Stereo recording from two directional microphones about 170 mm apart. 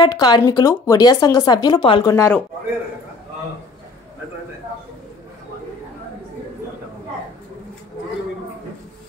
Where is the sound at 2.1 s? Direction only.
15° left (ahead or behind).